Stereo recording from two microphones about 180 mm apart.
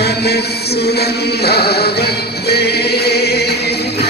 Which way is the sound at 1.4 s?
60° left (ahead or behind).